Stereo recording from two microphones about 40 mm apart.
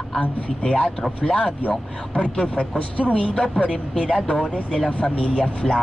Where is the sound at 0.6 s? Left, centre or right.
Left.